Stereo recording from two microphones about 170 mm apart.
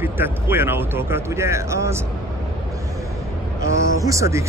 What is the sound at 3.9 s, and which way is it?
Speech, 20° right (ahead or behind).